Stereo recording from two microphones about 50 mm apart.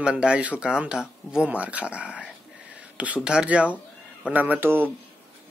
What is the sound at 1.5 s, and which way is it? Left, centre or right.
Speech, right.